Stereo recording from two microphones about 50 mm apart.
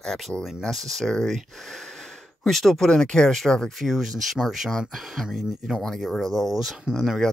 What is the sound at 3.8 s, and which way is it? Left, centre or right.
Speech, centre.